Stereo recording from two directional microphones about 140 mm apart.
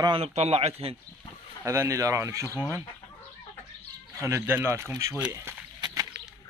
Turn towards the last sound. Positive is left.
turn(degrees=-20)  # may be behind; listen again after turning